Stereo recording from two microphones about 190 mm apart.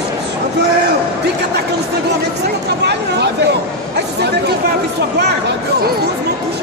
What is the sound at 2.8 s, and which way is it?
Chatter, 60° right (ahead or behind).